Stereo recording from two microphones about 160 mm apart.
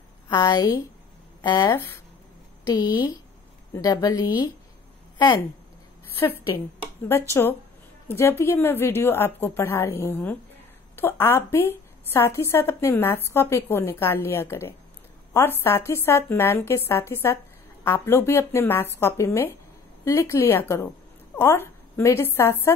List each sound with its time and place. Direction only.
0.3 s a woman's voice: 25° left (ahead or behind)
6.1 s a woman's voice: 15° left (ahead or behind)
8.1 s a woman's voice: 15° left (ahead or behind)